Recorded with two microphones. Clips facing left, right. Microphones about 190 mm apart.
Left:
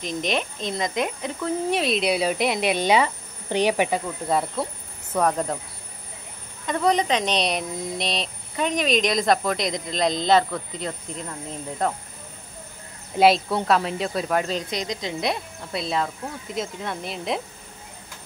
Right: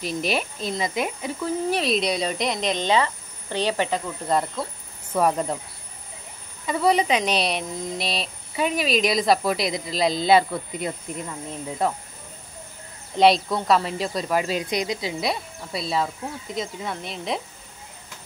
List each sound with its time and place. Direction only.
0.0 s speech: 5° right (ahead or behind)
6.6 s speech: 5° right (ahead or behind)
13.2 s speech: 5° left (ahead or behind)